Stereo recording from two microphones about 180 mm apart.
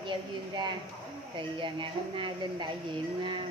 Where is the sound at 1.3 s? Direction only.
30° right (ahead or behind).